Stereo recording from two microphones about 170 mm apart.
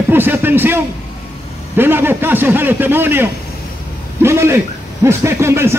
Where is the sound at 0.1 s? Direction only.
10° right (ahead or behind).